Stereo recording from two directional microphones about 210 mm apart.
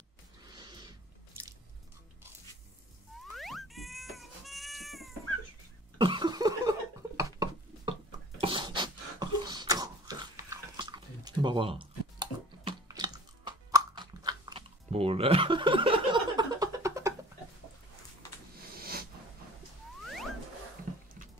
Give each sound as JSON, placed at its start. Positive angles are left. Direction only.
{"t": 0.6, "sound": "cat", "side_deg": -20}
{"t": 3.3, "sound": "cat", "side_deg": 0}
{"t": 5.9, "sound": "cough", "side_deg": -25}
{"t": 7.2, "sound": "a sound", "side_deg": -15}
{"t": 8.4, "sound": "beatboxing", "side_deg": -25}
{"t": 18.8, "sound": "a sound", "side_deg": -45}